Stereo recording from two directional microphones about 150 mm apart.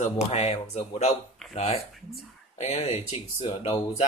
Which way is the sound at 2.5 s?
45° left (ahead or behind).